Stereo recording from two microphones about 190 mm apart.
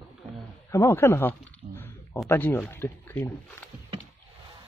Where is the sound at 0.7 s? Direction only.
15° left (ahead or behind).